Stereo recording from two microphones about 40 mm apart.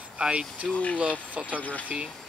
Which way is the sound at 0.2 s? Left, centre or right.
Right.